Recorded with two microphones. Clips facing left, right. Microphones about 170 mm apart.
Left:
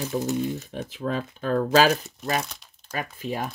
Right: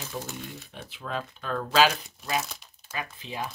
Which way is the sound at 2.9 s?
45° left (ahead or behind).